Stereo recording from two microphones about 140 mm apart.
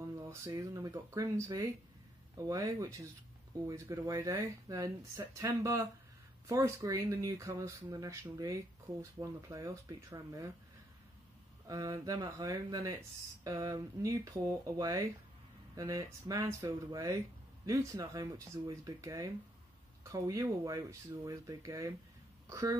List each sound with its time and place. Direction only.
0.2 s speech: 20° right (ahead or behind)
11.6 s speech: 25° right (ahead or behind)